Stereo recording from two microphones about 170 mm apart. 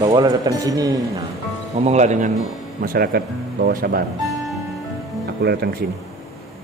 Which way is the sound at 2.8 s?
60° right (ahead or behind).